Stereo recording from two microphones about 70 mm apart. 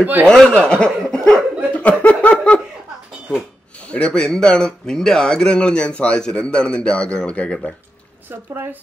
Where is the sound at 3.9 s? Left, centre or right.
Centre.